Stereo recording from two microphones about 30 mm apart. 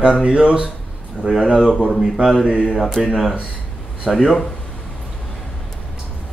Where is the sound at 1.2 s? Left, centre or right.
Centre.